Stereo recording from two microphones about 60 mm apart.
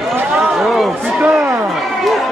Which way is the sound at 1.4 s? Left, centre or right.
Right.